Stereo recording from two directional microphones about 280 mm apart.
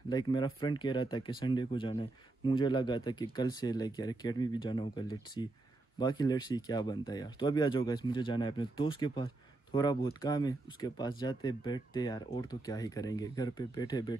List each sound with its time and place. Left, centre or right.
0.1 s speech: centre